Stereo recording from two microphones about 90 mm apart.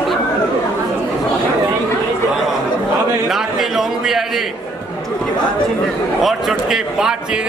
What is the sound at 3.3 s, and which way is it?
A man's voice, 5° right (ahead or behind).